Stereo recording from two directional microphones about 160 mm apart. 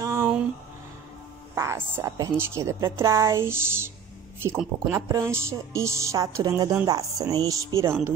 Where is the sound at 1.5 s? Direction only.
15° right (ahead or behind).